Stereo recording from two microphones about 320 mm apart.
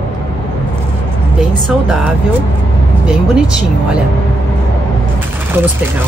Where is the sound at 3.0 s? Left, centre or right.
Centre.